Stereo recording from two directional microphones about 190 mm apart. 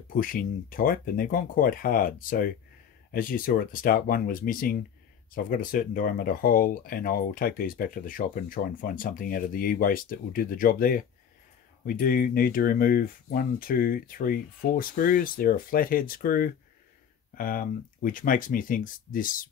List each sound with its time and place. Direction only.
0.1 s speech: 50° left (ahead or behind)